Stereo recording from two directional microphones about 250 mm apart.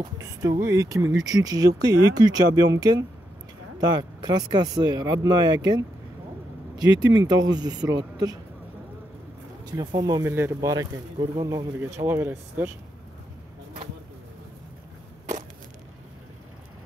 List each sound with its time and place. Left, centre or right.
0.2 s speech: centre
4.2 s speech: centre
6.8 s speech: centre
9.7 s speech: centre